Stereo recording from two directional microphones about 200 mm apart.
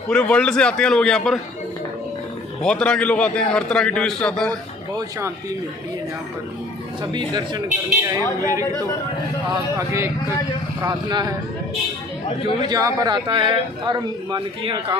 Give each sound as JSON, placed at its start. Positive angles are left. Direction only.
{"t": 0.1, "sound": "a man's voice", "side_deg": 5}
{"t": 2.6, "sound": "a man's voice", "side_deg": 5}
{"t": 4.5, "sound": "a man's voice", "side_deg": -20}
{"t": 7.0, "sound": "a man's voice", "side_deg": -20}
{"t": 9.8, "sound": "a woman's voice", "side_deg": -15}
{"t": 12.6, "sound": "a man's voice", "side_deg": -20}